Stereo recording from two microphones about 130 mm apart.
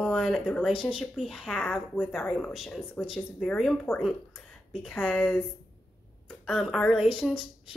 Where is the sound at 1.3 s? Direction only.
5° left (ahead or behind).